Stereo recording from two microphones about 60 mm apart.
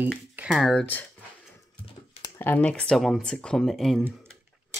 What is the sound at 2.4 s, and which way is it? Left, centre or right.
Speech, left.